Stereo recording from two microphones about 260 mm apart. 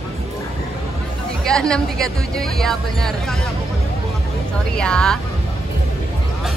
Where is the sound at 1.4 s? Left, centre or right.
Centre.